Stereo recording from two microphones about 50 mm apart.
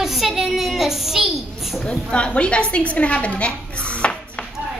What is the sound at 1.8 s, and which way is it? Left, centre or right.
A woman's voice, left.